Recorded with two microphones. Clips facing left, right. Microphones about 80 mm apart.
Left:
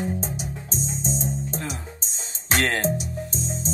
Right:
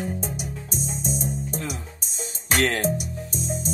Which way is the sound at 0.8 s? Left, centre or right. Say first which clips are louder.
Left 1 dB; left.